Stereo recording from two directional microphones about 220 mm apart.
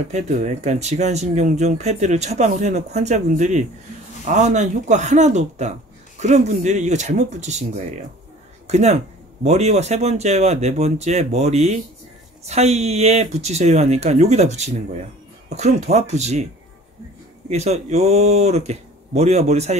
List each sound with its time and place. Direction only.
0.1 s speech: 30° right (ahead or behind)
17.5 s speech: 30° right (ahead or behind)